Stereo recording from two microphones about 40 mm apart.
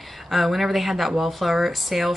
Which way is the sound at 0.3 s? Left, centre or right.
Centre.